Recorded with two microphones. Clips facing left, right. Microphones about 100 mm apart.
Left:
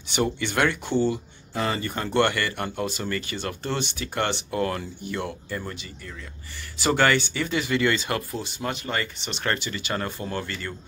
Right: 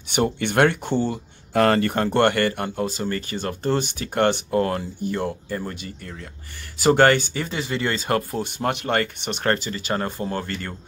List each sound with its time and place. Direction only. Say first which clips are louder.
0.1 s speech: right 3 dB; 55° right (ahead or behind)
1.5 s speech: right 9 dB; 70° right (ahead or behind); by 2.6 s 45° right (ahead or behind)
2.6 s speech: right 3 dB; 35° right (ahead or behind)
7.0 s speech: right 2 dB; 45° right (ahead or behind)